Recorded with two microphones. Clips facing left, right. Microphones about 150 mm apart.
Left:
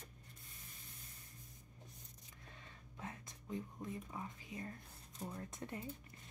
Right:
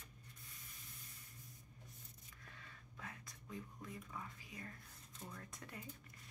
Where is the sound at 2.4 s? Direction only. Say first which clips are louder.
Left 2 dB; 25° left (ahead or behind).